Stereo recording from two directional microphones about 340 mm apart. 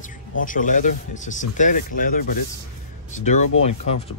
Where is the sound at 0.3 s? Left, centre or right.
Left.